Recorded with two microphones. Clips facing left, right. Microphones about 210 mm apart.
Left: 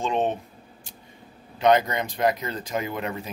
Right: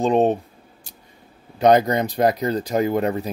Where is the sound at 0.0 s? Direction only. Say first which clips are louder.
Right 7 dB; 40° right (ahead or behind).